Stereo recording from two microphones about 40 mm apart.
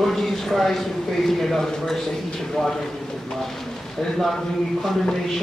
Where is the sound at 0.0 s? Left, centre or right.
Centre.